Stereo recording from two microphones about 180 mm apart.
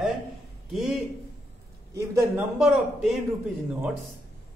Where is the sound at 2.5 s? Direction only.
5° right (ahead or behind).